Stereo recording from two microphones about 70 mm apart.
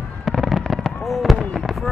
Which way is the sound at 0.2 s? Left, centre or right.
Centre.